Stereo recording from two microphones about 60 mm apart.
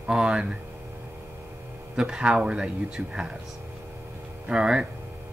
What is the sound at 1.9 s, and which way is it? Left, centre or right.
Speech, centre.